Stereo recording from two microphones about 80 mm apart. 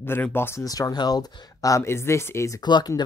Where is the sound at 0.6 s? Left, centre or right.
Left.